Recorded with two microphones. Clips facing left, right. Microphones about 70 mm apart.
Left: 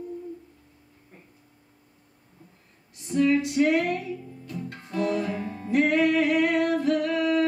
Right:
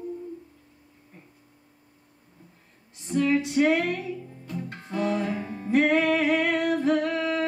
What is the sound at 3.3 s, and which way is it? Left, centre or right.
Music, right.